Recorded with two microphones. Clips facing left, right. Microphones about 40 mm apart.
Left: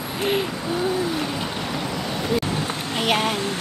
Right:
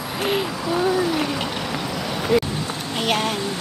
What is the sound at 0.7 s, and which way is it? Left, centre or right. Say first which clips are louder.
Speech: right 5 dB; right.